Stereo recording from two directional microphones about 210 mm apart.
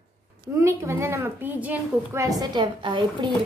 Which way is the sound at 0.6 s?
10° right (ahead or behind).